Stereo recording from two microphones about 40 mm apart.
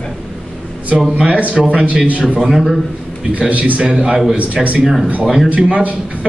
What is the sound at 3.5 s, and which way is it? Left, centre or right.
Speech, right.